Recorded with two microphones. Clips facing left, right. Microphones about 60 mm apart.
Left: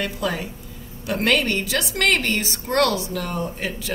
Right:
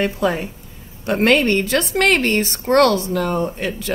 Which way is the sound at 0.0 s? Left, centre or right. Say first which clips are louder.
Right 6 dB; right.